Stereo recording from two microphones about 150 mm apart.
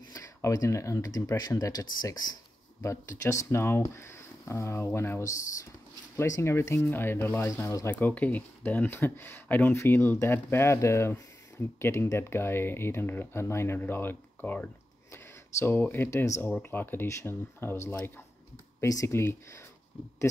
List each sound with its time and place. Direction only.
0.1 s speech: 20° left (ahead or behind)